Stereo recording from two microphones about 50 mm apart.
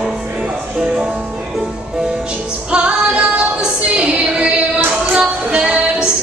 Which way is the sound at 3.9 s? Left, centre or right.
Right.